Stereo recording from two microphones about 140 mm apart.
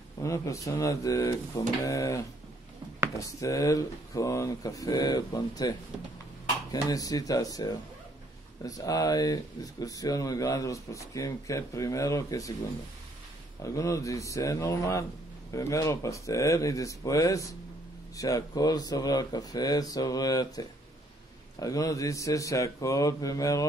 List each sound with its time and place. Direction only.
0.2 s speech: 20° left (ahead or behind)
13.6 s speech: 20° left (ahead or behind)